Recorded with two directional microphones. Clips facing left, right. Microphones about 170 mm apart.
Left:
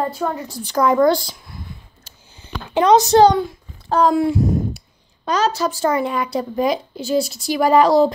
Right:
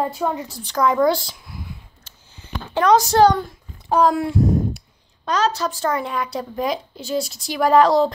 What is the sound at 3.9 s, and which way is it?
A woman's voice, 5° right (ahead or behind).